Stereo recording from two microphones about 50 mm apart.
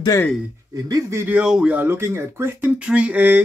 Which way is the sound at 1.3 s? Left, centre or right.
Right.